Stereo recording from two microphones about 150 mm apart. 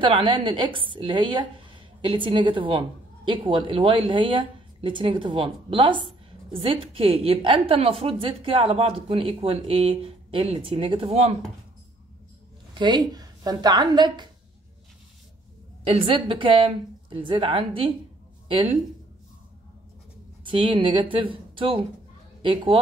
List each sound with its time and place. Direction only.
0.0 s a woman's voice: 35° right (ahead or behind)
12.7 s a woman's voice: 30° right (ahead or behind)
15.8 s a woman's voice: 40° right (ahead or behind)
20.4 s a woman's voice: 35° right (ahead or behind)